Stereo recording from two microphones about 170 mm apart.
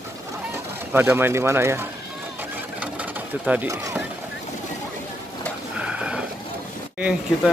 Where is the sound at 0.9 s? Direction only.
15° right (ahead or behind).